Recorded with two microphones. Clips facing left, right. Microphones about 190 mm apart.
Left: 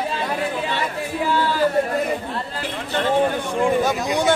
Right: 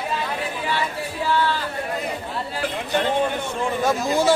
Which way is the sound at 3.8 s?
Centre (ahead or behind).